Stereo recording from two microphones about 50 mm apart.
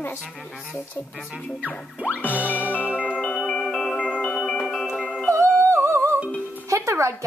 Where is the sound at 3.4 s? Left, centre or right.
Centre.